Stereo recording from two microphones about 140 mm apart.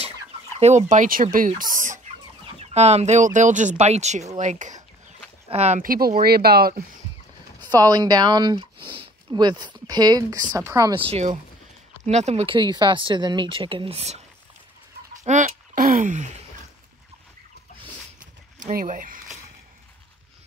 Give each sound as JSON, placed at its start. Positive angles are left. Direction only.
{"t": 0.6, "sound": "speech", "side_deg": -55}
{"t": 2.6, "sound": "speech", "side_deg": -50}
{"t": 5.5, "sound": "speech", "side_deg": -50}
{"t": 5.8, "sound": "speech", "side_deg": -90}
{"t": 7.6, "sound": "speech", "side_deg": -30}
{"t": 11.0, "sound": "speech", "side_deg": -50}
{"t": 12.4, "sound": "speech", "side_deg": -30}
{"t": 15.1, "sound": "a sound", "side_deg": -65}
{"t": 18.2, "sound": "a sound", "side_deg": -80}